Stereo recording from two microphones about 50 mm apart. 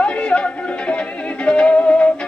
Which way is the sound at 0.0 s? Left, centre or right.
Left.